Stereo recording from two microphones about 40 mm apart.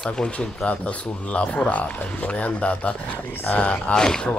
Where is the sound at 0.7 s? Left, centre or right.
Left.